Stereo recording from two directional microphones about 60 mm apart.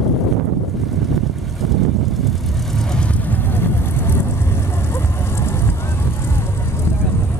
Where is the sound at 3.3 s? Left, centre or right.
Left.